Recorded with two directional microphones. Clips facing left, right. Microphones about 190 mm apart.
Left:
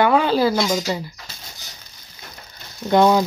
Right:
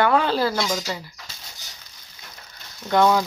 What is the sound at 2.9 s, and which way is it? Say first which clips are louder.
Speech: left 3 dB; 20° left (ahead or behind).